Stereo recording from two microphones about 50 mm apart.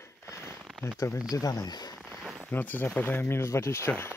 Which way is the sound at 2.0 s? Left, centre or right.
Centre.